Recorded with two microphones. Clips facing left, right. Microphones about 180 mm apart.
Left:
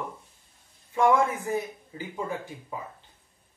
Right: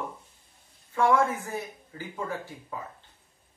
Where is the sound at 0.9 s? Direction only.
15° left (ahead or behind).